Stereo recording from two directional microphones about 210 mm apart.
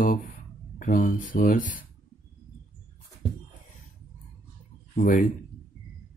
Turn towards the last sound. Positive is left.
turn(degrees=35)  # may be behind; listen again after turning